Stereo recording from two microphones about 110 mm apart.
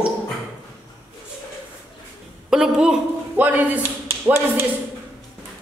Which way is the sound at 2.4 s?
5° right (ahead or behind).